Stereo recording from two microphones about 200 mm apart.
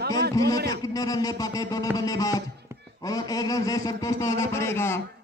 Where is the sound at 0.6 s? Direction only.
55° right (ahead or behind).